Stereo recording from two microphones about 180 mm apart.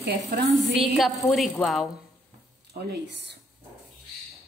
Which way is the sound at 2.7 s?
65° right (ahead or behind).